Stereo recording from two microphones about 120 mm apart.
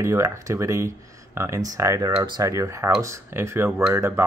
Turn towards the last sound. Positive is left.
turn(degrees=-20)  # may be behind; listen again after turning